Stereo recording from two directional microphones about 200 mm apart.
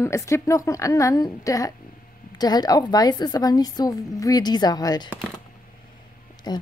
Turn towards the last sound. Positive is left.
turn(degrees=20)  # may be behind; listen again after turning